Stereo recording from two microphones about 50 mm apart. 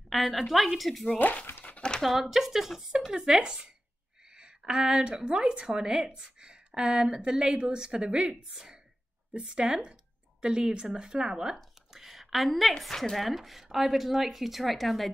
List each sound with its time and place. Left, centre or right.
0.1 s speech: centre
1.1 s speech: left
1.8 s a sound: centre
2.2 s a woman's voice: centre